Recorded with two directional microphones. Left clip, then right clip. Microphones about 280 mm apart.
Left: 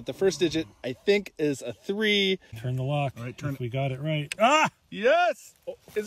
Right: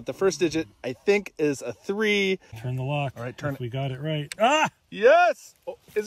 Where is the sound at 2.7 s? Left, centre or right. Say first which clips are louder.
Even; centre.